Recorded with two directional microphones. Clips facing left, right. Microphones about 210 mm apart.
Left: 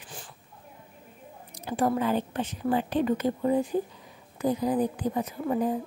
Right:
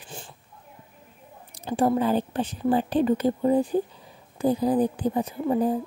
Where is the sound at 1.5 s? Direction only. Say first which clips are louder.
Right 4 dB; 30° right (ahead or behind).